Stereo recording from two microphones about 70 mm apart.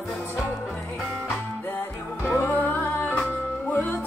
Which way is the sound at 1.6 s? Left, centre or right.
Left.